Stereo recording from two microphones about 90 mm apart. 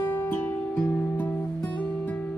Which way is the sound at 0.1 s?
20° left (ahead or behind).